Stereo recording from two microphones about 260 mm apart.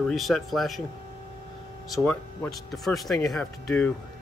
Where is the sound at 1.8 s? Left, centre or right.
Centre.